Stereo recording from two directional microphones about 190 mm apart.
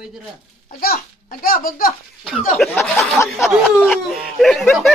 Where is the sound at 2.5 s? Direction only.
5° left (ahead or behind).